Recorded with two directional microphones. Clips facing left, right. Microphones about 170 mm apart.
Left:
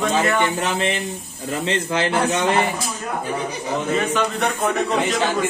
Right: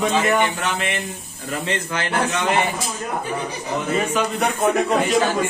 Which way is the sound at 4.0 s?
10° right (ahead or behind).